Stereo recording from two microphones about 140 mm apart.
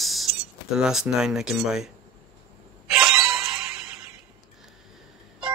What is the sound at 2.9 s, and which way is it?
Music, 5° right (ahead or behind).